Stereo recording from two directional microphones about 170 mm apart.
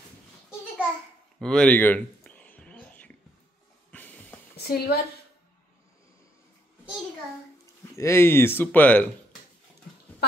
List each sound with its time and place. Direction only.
1.4 s whispering: 5° left (ahead or behind)
3.9 s music: 10° left (ahead or behind)
4.6 s a woman's voice: 70° left (ahead or behind)
7.9 s speech: 15° left (ahead or behind)